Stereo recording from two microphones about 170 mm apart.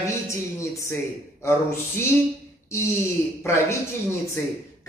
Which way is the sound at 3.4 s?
15° left (ahead or behind).